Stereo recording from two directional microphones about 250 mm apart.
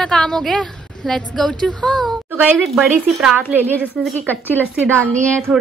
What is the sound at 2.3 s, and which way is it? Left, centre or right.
A woman's voice, centre.